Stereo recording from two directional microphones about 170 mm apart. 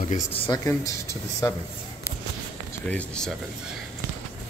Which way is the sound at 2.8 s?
5° left (ahead or behind).